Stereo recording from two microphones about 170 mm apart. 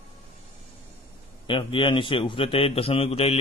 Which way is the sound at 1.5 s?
30° left (ahead or behind).